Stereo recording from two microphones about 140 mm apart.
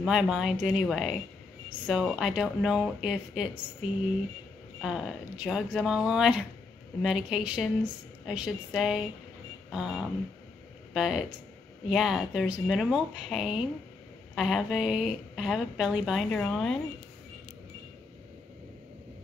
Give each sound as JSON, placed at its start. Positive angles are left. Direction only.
{"t": 0.0, "sound": "speech", "side_deg": -5}
{"t": 9.7, "sound": "a sound", "side_deg": -5}
{"t": 10.9, "sound": "speech", "side_deg": -5}